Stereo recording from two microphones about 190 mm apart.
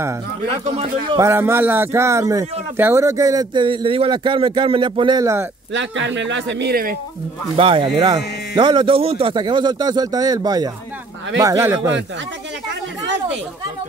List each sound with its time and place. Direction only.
0.7 s a man's voice: 25° right (ahead or behind)
5.7 s speech: 75° right (ahead or behind); by 7.0 s 50° right (ahead or behind)
7.5 s a man's voice: 30° right (ahead or behind)